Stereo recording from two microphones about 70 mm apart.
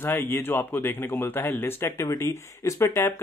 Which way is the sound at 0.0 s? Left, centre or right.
Left.